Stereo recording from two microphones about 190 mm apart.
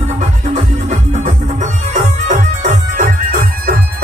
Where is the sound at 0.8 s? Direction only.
40° right (ahead or behind).